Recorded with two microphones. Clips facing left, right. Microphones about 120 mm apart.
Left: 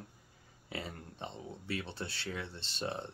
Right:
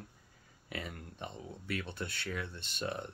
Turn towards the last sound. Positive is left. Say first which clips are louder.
# even
turn(degrees=25)  # may be behind; listen again after turning